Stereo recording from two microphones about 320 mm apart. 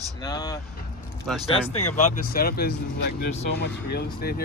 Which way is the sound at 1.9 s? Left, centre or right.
Left.